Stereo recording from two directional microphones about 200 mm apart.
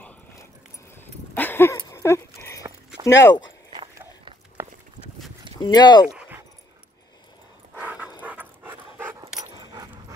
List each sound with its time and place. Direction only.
0.9 s dog: 10° left (ahead or behind)
3.1 s speech: 65° left (ahead or behind)
4.6 s horse: 15° right (ahead or behind)
5.6 s speech: 20° left (ahead or behind)
6.0 s dog: 5° right (ahead or behind)
7.8 s dog: 5° right (ahead or behind)